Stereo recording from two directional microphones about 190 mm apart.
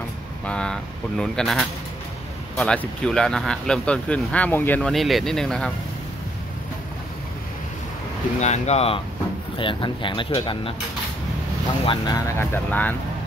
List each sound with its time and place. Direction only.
0.5 s speech: 5° left (ahead or behind)
8.4 s speech: 35° left (ahead or behind)
11.8 s speech: 25° left (ahead or behind)
12.4 s speech: 10° left (ahead or behind)